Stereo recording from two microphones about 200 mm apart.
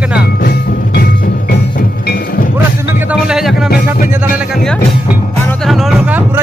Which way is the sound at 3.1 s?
5° right (ahead or behind).